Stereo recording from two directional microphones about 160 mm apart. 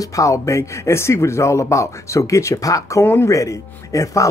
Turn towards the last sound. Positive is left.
turn(degrees=20)  # may be behind; listen again after turning